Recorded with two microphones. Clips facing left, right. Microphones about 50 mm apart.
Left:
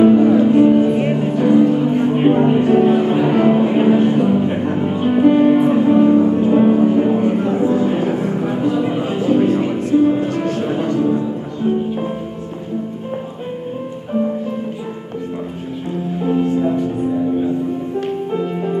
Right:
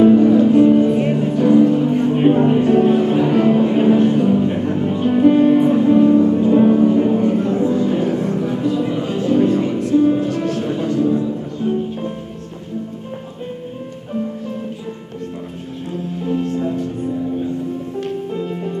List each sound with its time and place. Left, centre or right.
0.0 s music: left
16.2 s music: centre
18.0 s music: centre